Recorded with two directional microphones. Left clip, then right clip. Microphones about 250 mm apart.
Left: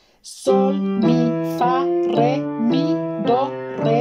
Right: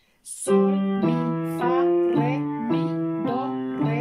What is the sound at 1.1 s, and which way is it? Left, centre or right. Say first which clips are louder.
Music: left 7 dB; centre.